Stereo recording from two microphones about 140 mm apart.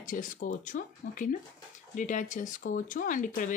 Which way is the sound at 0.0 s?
70° left (ahead or behind).